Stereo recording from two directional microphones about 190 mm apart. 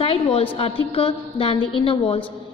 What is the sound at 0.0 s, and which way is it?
A woman's voice, 30° left (ahead or behind).